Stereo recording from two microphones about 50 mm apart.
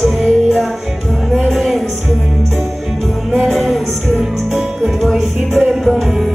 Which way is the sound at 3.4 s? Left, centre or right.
Centre.